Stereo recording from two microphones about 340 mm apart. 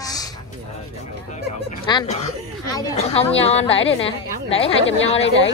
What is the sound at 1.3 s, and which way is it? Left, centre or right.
A woman's voice, centre.